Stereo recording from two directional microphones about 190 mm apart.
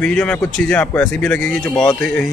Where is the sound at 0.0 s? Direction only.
5° left (ahead or behind).